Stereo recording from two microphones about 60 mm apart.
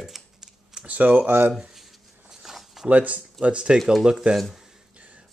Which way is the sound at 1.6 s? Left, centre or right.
Centre.